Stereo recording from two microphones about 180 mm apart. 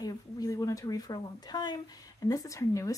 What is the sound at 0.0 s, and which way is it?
Speech, 20° left (ahead or behind).